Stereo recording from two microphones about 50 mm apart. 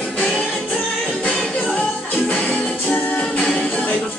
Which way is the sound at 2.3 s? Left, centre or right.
Centre.